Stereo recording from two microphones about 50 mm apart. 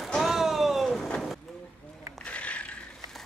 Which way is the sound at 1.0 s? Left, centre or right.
Centre.